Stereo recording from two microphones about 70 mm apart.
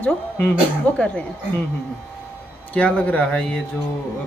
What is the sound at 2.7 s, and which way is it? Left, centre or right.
Speech, centre.